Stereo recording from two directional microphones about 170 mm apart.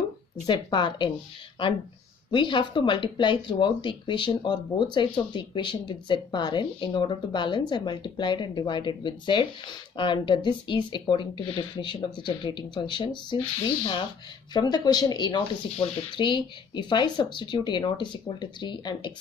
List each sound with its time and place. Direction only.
0.5 s speech: 25° left (ahead or behind)
2.3 s speech: 25° left (ahead or behind)
14.5 s speech: 25° left (ahead or behind)